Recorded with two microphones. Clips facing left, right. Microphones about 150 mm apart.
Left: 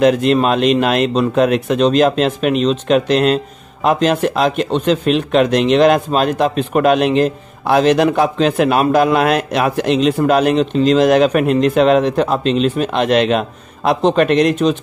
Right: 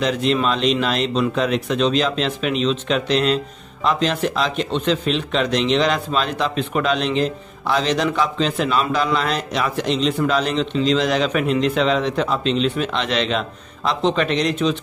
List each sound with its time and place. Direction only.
0.0 s speech: 55° left (ahead or behind)